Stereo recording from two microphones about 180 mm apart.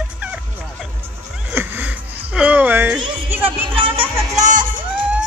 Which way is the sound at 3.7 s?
30° right (ahead or behind).